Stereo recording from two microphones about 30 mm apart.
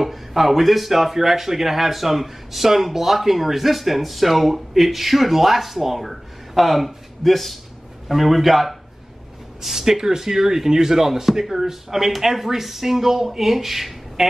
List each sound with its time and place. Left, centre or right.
0.0 s speech: centre
9.6 s speech: centre